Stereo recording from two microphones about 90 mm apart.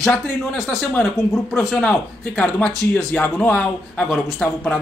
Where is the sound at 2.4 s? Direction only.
15° left (ahead or behind).